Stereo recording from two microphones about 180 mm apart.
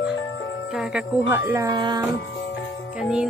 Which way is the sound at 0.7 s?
5° right (ahead or behind).